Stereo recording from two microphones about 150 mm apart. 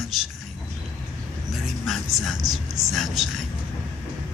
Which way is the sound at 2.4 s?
25° right (ahead or behind).